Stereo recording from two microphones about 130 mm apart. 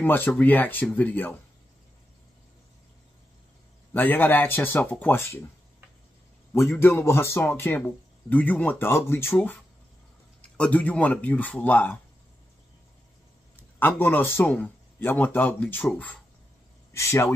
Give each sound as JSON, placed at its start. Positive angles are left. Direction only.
{"t": 0.0, "sound": "speech", "side_deg": 15}
{"t": 3.9, "sound": "speech", "side_deg": 15}
{"t": 6.5, "sound": "a man's voice", "side_deg": 20}
{"t": 10.6, "sound": "speech", "side_deg": 10}
{"t": 13.7, "sound": "a man's voice", "side_deg": 15}